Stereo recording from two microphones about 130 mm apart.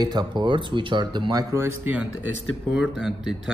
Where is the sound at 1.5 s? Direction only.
15° right (ahead or behind).